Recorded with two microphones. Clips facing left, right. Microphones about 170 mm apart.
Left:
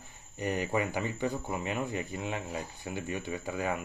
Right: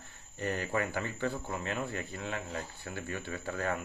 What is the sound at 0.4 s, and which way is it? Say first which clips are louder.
Speech: left 2 dB; 15° left (ahead or behind).